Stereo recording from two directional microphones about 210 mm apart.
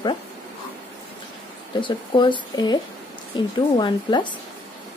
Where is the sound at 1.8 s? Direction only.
25° left (ahead or behind).